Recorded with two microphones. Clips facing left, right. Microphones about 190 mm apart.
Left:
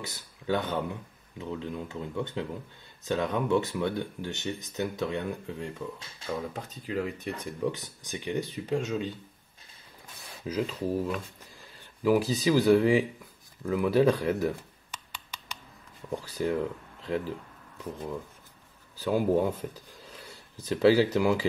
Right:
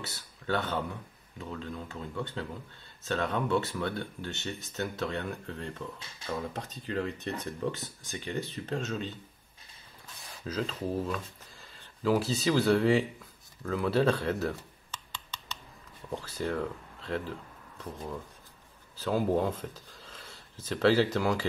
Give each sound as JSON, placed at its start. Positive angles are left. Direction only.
{"t": 0.0, "sound": "speech", "side_deg": 15}
{"t": 10.4, "sound": "speech", "side_deg": 15}
{"t": 13.6, "sound": "computer keyboard", "side_deg": 15}
{"t": 16.2, "sound": "speech", "side_deg": 15}
{"t": 18.9, "sound": "speech", "side_deg": 15}